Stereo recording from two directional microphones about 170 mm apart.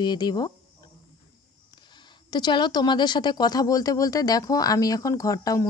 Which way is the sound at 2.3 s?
25° left (ahead or behind).